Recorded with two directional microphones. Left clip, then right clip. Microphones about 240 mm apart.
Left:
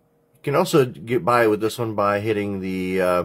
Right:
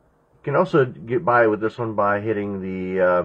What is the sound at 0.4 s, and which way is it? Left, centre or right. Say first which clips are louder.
Speech: even; left.